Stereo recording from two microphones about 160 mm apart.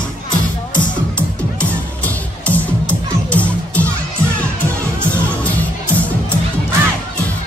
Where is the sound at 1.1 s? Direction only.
10° left (ahead or behind).